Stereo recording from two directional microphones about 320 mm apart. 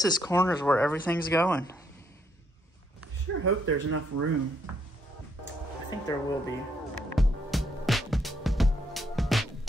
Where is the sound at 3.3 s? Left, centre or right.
Right.